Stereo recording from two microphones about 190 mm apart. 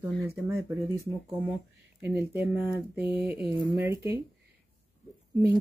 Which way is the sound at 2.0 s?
10° right (ahead or behind).